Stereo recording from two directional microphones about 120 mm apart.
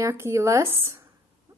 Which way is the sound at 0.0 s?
25° right (ahead or behind).